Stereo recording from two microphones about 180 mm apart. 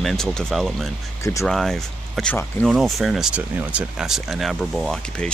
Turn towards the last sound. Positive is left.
turn(degrees=0)  # may be behind; listen again after turning